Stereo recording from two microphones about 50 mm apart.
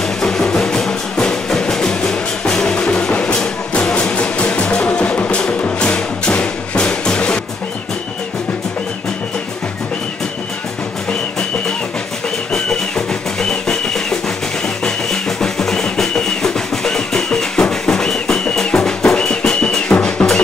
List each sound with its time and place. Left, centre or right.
0.2 s music: centre
12.5 s music: centre